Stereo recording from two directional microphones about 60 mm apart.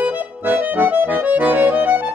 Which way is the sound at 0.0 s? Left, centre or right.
Right.